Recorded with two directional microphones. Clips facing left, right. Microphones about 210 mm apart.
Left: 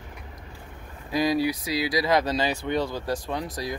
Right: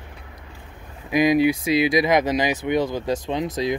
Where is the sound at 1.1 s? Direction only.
20° right (ahead or behind).